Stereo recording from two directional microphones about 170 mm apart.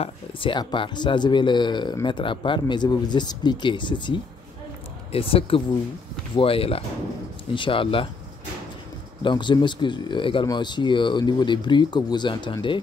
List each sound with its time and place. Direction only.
0.0 s speech: 30° left (ahead or behind)
9.2 s speech: 25° left (ahead or behind)